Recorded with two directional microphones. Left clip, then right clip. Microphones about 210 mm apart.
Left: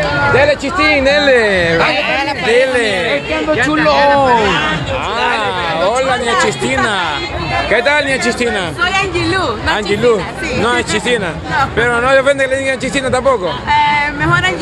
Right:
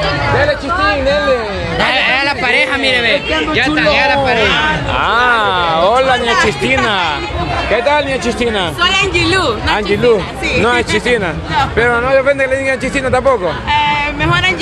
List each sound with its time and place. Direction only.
0.4 s speech: 30° left (ahead or behind)
2.0 s music: 40° right (ahead or behind)
5.2 s speech: 5° right (ahead or behind)
7.7 s speech: 10° left (ahead or behind)
8.8 s speech: 10° right (ahead or behind)
9.7 s a man's voice: centre (ahead or behind)
12.0 s a man's voice: 10° left (ahead or behind); by 14.5 s 10° right (ahead or behind)